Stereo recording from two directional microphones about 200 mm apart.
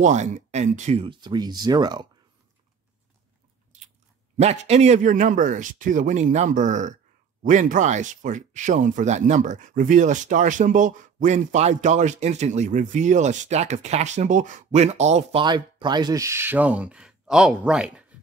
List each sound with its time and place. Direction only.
0.0 s speech: 35° right (ahead or behind); by 2.0 s 20° right (ahead or behind)
4.4 s speech: 35° right (ahead or behind)
15.4 s speech: 20° right (ahead or behind); by 18.0 s 5° right (ahead or behind)